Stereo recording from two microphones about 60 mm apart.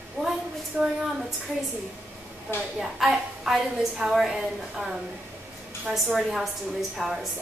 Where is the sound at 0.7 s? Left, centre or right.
Right.